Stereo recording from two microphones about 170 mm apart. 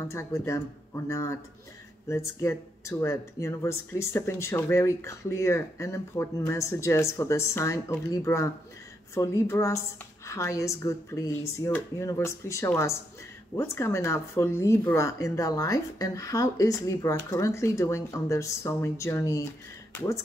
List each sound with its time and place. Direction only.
0.0 s speech: 15° left (ahead or behind)